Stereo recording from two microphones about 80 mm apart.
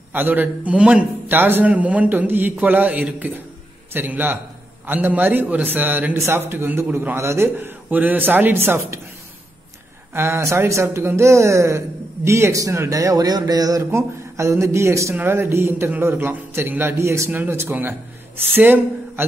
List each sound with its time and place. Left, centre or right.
0.1 s a man's voice: right
1.3 s a man's voice: right
10.1 s a man's voice: right
13.8 s a man's voice: right